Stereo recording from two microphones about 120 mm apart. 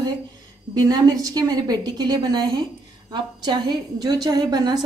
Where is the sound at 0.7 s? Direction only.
30° right (ahead or behind).